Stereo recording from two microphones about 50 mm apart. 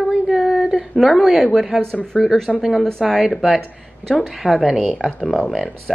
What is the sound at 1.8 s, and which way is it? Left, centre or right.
Speech, centre.